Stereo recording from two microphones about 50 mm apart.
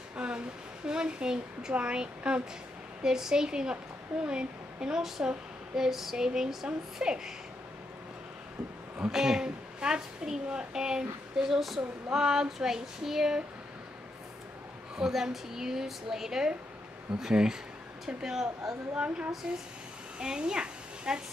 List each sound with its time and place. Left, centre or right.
0.1 s a sound: right
0.8 s a child's voice: centre
9.1 s a child's voice: centre
15.0 s a child's voice: centre
19.4 s a woman's voice: right